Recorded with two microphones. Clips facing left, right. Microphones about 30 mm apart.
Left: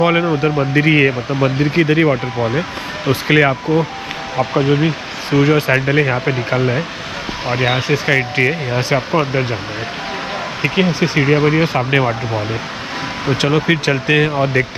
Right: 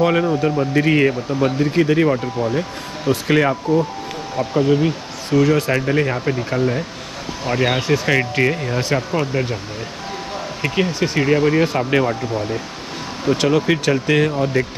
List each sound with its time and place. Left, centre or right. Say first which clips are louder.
0.0 s speech: left 2 dB; left
6.3 s speech: left 3 dB; left
7.4 s speech: left 1 dB; left
10.6 s speech: left 3 dB; left
13.4 s speech: left 3 dB; left